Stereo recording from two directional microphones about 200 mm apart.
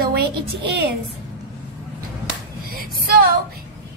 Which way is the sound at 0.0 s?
55° right (ahead or behind).